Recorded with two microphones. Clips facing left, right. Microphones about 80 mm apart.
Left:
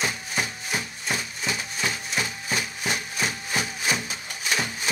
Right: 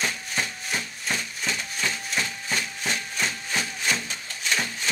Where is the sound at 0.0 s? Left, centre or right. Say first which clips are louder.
Left 1 dB; centre.